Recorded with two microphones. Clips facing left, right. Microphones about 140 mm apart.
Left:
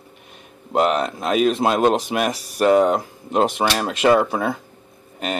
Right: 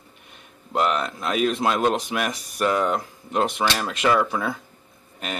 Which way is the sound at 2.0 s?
35° left (ahead or behind).